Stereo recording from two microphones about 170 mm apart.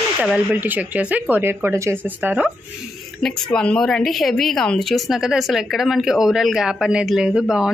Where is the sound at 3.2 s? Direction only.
5° left (ahead or behind).